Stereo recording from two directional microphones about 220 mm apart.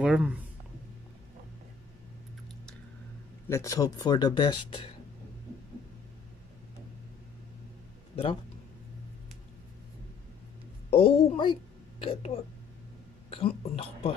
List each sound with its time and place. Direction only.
0.0 s speech: 5° right (ahead or behind)
3.4 s speech: 15° left (ahead or behind)
10.9 s speech: 25° left (ahead or behind)